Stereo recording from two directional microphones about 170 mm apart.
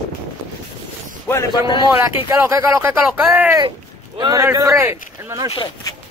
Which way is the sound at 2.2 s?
15° right (ahead or behind).